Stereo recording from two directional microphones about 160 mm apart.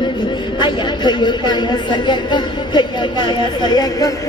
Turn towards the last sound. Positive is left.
turn(degrees=25)  # may be behind; listen again after turning